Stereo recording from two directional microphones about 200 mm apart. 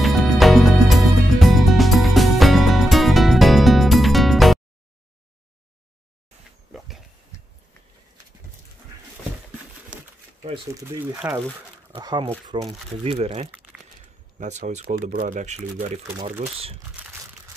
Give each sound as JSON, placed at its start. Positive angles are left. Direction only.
{"t": 0.0, "sound": "music", "side_deg": 0}
{"t": 10.4, "sound": "a sound", "side_deg": -25}
{"t": 10.7, "sound": "speech", "side_deg": -15}
{"t": 11.1, "sound": "speech", "side_deg": -5}
{"t": 11.9, "sound": "speech", "side_deg": -20}
{"t": 13.5, "sound": "crumpling", "side_deg": -5}
{"t": 14.4, "sound": "speech", "side_deg": -35}